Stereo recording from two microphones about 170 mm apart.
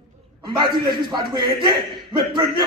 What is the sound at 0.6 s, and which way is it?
A man's voice, 25° right (ahead or behind).